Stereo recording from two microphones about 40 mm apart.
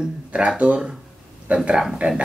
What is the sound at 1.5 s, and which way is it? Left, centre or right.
Speech, right.